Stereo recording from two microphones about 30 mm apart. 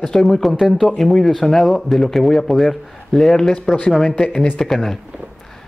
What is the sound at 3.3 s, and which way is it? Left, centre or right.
Speech, left.